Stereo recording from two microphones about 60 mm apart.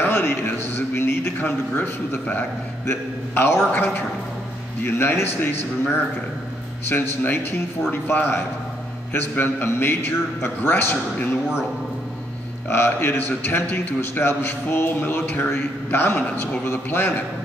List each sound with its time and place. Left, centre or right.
0.0 s a man's voice: left
2.9 s a man's voice: left
9.4 s a man's voice: left
12.6 s a man's voice: left